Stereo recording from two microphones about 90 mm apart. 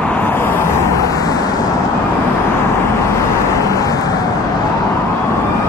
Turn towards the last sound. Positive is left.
turn(degrees=40)  # may be behind; listen again after turning